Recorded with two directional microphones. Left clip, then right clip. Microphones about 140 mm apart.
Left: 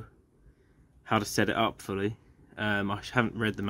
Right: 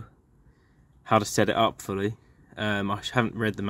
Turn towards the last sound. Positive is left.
turn(degrees=-30)  # may be behind; listen again after turning